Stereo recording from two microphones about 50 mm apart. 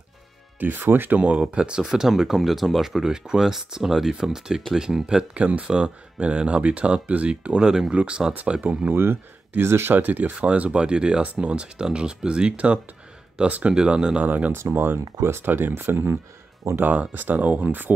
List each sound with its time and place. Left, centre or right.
0.6 s speech: right
1.1 s speech: right
1.9 s speech: centre
8.5 s speech: right
8.9 s speech: right
9.9 s speech: right
10.4 s speech: right
13.7 s speech: centre
14.2 s speech: right
14.5 s speech: right
16.8 s speech: right